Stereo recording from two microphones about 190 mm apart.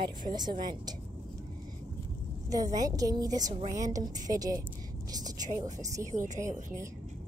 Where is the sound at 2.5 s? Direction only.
20° right (ahead or behind).